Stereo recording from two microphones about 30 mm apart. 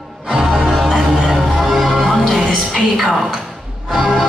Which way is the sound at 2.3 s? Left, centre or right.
Right.